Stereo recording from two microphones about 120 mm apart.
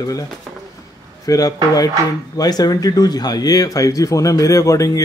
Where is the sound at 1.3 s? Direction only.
30° left (ahead or behind).